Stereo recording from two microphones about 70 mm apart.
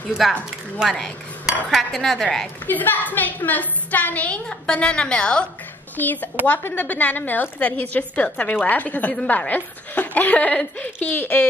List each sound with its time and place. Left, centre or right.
0.2 s dishes: centre
2.6 s a woman's voice: left
5.9 s a woman's voice: left